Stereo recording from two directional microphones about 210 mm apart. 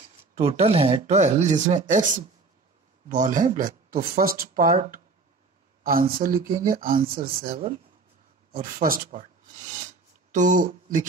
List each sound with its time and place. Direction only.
0.3 s speech: 30° right (ahead or behind)